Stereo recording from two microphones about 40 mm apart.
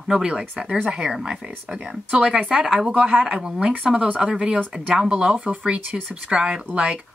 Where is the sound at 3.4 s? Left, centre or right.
Centre.